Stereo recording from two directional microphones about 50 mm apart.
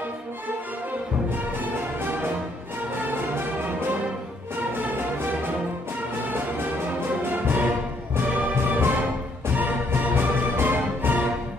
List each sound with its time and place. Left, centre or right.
3.0 s music: right
7.1 s music: right